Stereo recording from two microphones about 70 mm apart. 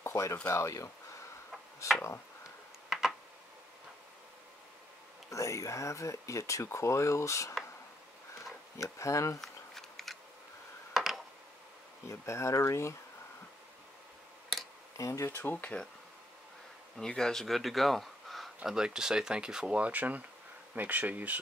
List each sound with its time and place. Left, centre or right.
0.0 s a sound: left
0.5 s speech: left
2.9 s tick: centre
5.3 s speech: left
8.7 s speech: left
9.4 s a sound: centre
12.1 s speech: left
15.0 s speech: left
15.4 s speech: left
16.9 s speech: centre
18.7 s speech: centre